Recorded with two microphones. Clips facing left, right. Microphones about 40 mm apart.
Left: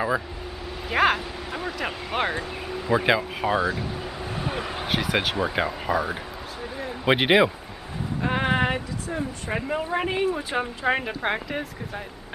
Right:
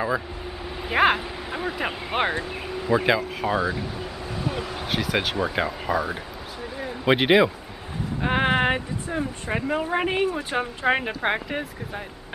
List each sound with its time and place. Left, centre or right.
0.8 s speech: centre
2.9 s speech: centre
4.3 s a sound: left
4.9 s speech: centre
8.2 s speech: right
10.5 s speech: centre